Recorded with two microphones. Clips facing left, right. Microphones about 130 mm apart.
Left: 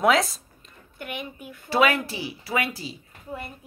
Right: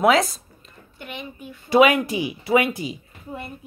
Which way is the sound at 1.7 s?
15° right (ahead or behind).